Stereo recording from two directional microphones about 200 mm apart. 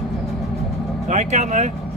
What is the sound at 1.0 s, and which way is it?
Speech, 35° right (ahead or behind).